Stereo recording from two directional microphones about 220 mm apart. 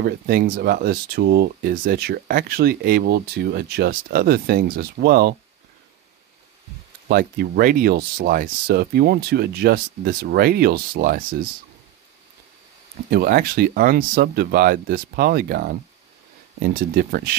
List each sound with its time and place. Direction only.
0.0 s speech: 40° right (ahead or behind)
7.1 s speech: 45° right (ahead or behind)
13.1 s speech: 40° right (ahead or behind)